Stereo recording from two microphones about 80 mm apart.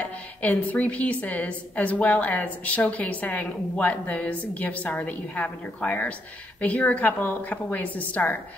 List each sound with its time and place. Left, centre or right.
0.0 s a woman's voice: centre